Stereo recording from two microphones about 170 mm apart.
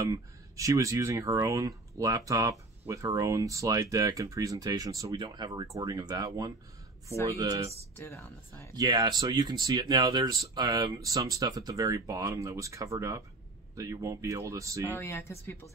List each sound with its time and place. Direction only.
0.0 s speech: 20° right (ahead or behind)
8.0 s speech: 15° left (ahead or behind)
8.7 s speech: 25° right (ahead or behind)
14.9 s speech: 15° left (ahead or behind)